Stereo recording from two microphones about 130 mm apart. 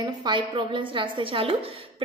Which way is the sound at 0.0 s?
35° right (ahead or behind).